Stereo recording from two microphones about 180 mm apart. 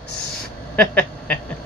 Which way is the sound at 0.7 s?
5° left (ahead or behind).